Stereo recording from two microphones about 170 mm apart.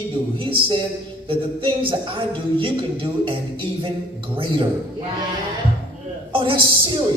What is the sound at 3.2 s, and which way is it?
Speech, 30° right (ahead or behind).